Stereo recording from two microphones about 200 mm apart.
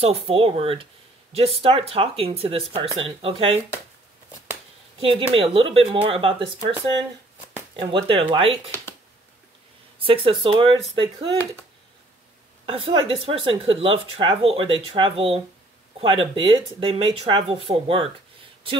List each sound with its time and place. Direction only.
0.0 s speech: 30° right (ahead or behind)
5.0 s speech: 25° right (ahead or behind)
7.7 s speech: 25° right (ahead or behind)
9.9 s speech: 25° right (ahead or behind)
12.6 s speech: 25° right (ahead or behind)